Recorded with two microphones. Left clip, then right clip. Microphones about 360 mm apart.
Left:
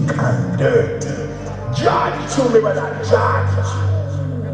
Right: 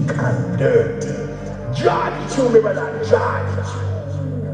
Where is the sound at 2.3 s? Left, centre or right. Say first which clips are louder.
Even; centre.